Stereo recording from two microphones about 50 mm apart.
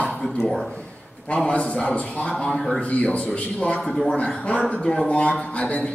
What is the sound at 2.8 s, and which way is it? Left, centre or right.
Speech, left.